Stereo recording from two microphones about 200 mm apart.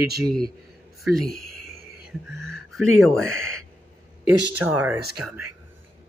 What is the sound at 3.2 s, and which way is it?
Speech, 90° right.